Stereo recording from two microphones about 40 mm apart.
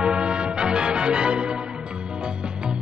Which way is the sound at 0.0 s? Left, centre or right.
Right.